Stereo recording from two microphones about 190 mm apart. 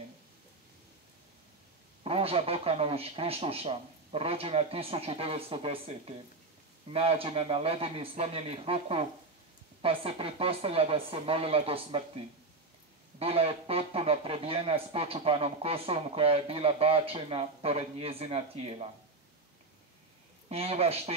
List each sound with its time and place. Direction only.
2.0 s speech: 30° right (ahead or behind)
13.2 s speech: 30° right (ahead or behind)
20.4 s speech: 30° right (ahead or behind)